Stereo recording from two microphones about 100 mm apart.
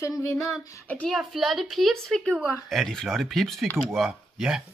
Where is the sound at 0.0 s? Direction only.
30° left (ahead or behind).